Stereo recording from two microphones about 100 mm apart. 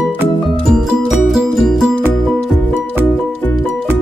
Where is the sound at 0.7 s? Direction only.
Centre (ahead or behind).